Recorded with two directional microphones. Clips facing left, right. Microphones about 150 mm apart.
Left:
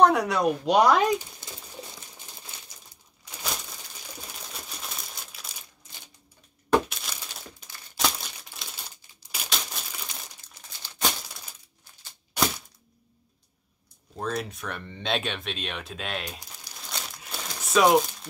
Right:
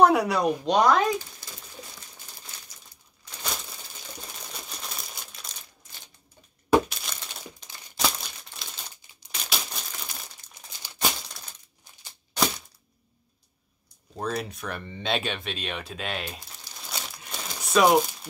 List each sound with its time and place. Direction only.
0.0 s speech: 5° right (ahead or behind)
0.7 s speech: 10° left (ahead or behind)
1.4 s a sound: 20° left (ahead or behind)
4.3 s crumpling: centre (ahead or behind)
6.7 s glass: centre (ahead or behind)
8.0 s crumpling: centre (ahead or behind)
14.1 s speech: centre (ahead or behind)
16.7 s crumpling: centre (ahead or behind)